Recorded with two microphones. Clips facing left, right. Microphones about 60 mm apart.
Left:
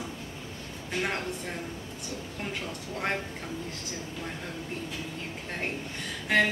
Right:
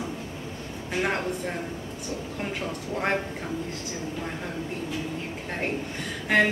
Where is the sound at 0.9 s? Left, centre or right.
Centre.